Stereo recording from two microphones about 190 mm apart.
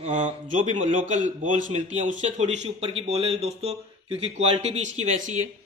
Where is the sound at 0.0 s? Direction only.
35° right (ahead or behind).